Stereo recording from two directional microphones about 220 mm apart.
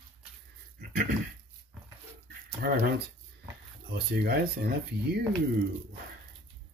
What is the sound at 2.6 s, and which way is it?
Speech, 45° right (ahead or behind).